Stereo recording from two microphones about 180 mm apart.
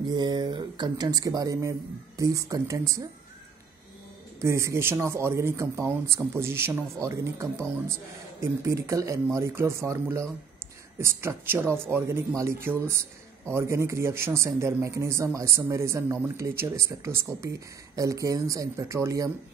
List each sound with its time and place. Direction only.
0.0 s speech: 25° right (ahead or behind)
4.4 s speech: 15° right (ahead or behind)